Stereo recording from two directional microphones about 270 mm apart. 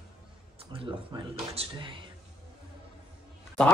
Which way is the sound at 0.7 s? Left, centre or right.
Centre.